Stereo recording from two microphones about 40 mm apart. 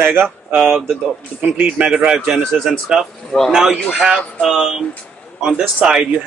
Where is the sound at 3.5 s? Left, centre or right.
Centre.